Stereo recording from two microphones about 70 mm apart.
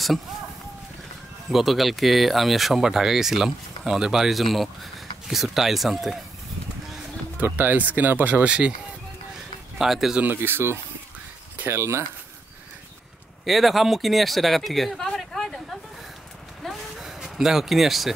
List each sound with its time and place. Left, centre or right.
1.5 s speech: centre
7.3 s speech: right
9.8 s speech: centre
10.2 s speech: right
11.5 s a sound: right
11.8 s speech: right
13.5 s speech: centre
16.6 s a sound: centre